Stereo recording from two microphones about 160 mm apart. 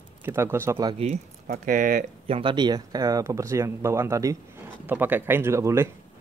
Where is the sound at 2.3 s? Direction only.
35° right (ahead or behind).